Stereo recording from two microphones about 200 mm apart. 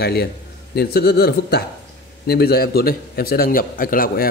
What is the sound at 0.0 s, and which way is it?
A man's voice, 50° left (ahead or behind).